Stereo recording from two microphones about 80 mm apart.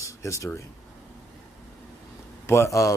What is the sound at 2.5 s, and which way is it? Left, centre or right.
Speech, left.